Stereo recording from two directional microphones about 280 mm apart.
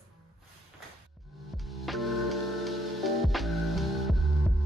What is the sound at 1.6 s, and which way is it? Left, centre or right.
Music, centre.